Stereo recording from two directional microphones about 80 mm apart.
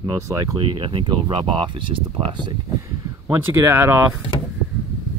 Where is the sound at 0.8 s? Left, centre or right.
Right.